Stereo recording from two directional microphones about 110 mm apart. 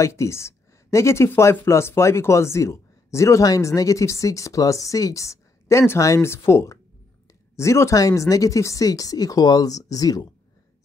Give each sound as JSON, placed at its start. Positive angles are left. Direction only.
{"t": 0.0, "sound": "speech", "side_deg": 25}